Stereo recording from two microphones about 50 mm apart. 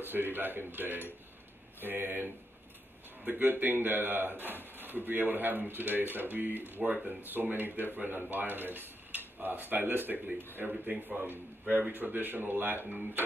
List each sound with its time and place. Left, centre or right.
0.0 s speech: right
6.8 s speech: right
7.4 s speech: right